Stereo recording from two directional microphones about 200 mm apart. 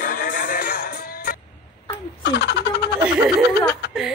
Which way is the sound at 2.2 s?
55° left (ahead or behind).